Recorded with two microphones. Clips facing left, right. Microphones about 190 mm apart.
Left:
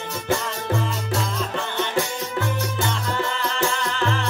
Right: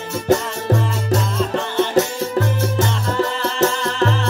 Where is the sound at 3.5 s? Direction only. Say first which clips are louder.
Right 8 dB; 40° right (ahead or behind).